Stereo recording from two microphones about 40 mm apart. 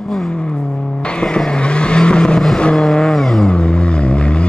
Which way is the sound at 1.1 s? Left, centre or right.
Left.